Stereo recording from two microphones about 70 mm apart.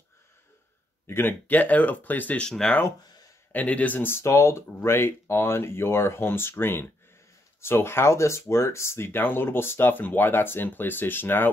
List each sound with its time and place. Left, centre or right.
1.0 s speech: left
2.4 s speech: centre
3.5 s speech: left